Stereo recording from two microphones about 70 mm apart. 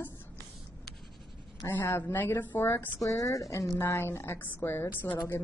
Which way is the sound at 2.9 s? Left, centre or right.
Left.